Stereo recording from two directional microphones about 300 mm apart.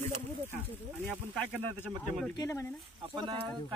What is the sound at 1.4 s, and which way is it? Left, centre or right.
Speech, centre.